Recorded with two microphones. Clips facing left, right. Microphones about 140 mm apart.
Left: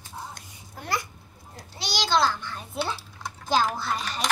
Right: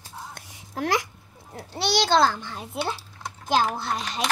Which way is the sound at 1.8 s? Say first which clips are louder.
Right 4 dB; 60° right (ahead or behind).